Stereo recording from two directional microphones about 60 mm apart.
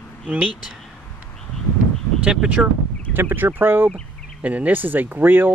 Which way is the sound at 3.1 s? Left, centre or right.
Right.